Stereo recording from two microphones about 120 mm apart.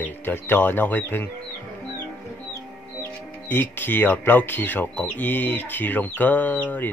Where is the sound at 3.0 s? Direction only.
15° left (ahead or behind).